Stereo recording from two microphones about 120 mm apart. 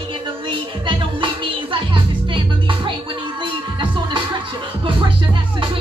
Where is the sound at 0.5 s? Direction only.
45° right (ahead or behind).